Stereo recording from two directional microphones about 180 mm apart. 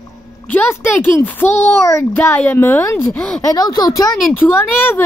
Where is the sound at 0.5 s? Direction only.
10° left (ahead or behind).